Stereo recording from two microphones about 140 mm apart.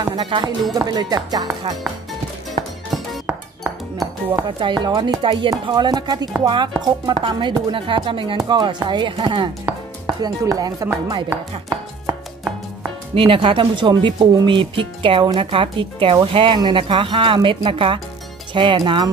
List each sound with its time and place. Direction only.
0.0 s speech: 30° right (ahead or behind)
0.7 s chopping: 30° right (ahead or behind)
4.5 s speech: 35° right (ahead or behind)
10.2 s chopping: 25° right (ahead or behind)
13.1 s speech: 40° right (ahead or behind)